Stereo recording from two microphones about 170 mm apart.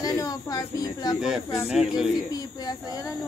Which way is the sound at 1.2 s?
5° right (ahead or behind).